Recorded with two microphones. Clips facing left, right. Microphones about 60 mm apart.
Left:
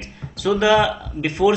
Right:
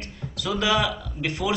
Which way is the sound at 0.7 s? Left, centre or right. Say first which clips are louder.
Left 7 dB; left.